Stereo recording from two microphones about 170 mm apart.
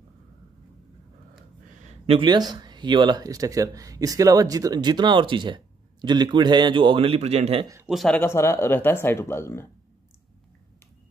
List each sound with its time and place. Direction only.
1.9 s speech: 30° right (ahead or behind)
7.8 s speech: 5° left (ahead or behind)
8.2 s speech: 15° left (ahead or behind)